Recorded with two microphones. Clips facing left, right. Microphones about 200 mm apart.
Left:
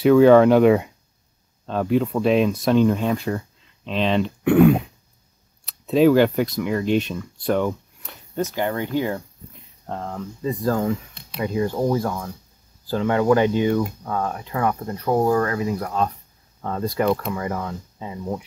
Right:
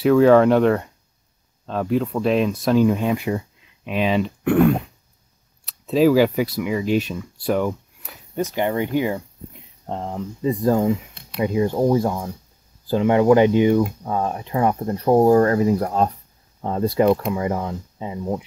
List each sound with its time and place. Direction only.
0.0 s speech: centre (ahead or behind); by 16.1 s 35° right (ahead or behind)
16.6 s speech: 25° right (ahead or behind)